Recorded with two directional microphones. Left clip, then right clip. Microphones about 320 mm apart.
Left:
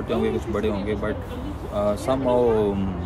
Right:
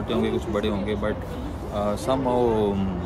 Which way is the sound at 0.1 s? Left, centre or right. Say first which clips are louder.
Left 1 dB; centre.